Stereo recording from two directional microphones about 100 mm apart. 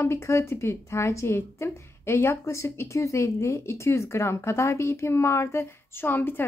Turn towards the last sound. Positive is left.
turn(degrees=20)  # may be behind; listen again after turning